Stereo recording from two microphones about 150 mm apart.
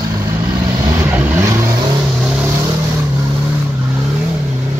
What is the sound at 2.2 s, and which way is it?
Vehicle, 10° right (ahead or behind).